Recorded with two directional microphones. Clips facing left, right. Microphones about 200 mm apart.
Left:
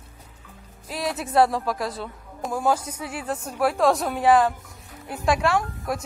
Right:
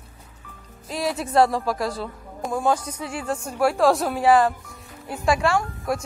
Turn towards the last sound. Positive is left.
turn(degrees=0)  # may be behind; listen again after turning